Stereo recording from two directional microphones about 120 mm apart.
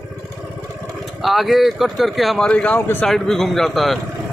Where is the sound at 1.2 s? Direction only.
Centre (ahead or behind); by 3.0 s 15° left (ahead or behind).